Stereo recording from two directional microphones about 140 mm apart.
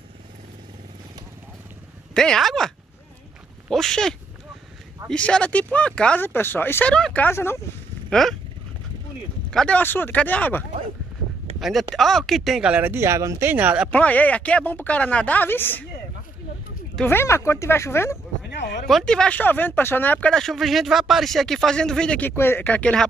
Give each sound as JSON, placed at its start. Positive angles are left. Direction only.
{"t": 2.1, "sound": "speech", "side_deg": 5}
{"t": 3.7, "sound": "speech", "side_deg": 5}
{"t": 5.1, "sound": "speech", "side_deg": 10}
{"t": 8.1, "sound": "speech", "side_deg": 0}
{"t": 9.5, "sound": "speech", "side_deg": 5}
{"t": 11.6, "sound": "speech", "side_deg": 0}
{"t": 13.8, "sound": "speech", "side_deg": 10}
{"t": 17.0, "sound": "speech", "side_deg": 15}
{"t": 18.9, "sound": "speech", "side_deg": 5}